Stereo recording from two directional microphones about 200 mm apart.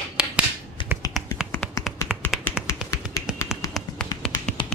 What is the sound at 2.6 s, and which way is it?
Finger snapping, 5° right (ahead or behind).